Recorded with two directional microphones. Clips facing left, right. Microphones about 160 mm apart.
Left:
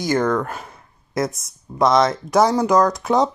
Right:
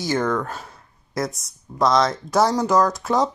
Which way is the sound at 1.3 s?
20° left (ahead or behind).